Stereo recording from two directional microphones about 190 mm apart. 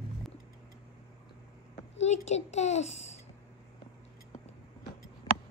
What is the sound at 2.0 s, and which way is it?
A child's voice, 35° left (ahead or behind).